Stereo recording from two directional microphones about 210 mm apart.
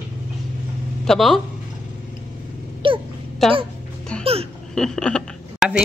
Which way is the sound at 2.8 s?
25° right (ahead or behind).